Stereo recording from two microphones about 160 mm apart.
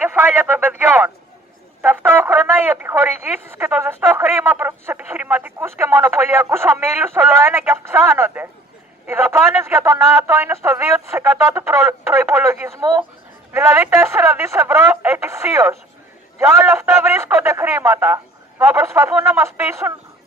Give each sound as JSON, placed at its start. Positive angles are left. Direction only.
{"t": 0.0, "sound": "radio", "side_deg": -10}
{"t": 1.8, "sound": "a man's voice", "side_deg": -10}